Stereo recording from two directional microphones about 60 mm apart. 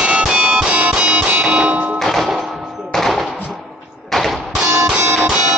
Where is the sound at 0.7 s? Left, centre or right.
Right.